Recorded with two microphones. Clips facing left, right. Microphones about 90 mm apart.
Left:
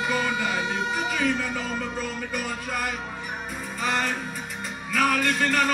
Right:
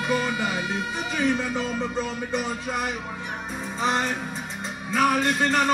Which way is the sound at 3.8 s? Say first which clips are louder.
Right 2 dB; 25° right (ahead or behind).